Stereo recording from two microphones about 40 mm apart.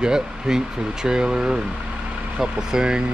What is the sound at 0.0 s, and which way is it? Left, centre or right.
Speech, centre.